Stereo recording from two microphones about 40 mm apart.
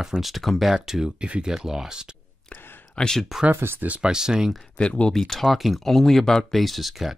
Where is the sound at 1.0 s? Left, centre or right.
Right.